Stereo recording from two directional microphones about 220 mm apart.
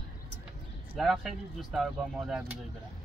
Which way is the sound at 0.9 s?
Centre (ahead or behind).